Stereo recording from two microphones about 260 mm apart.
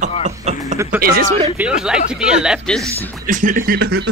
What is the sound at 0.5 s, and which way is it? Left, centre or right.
Speech, right.